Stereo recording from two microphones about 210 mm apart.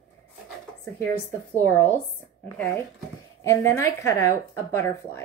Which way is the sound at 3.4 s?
15° left (ahead or behind).